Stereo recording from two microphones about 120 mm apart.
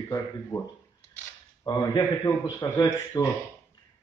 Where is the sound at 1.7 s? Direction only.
30° left (ahead or behind).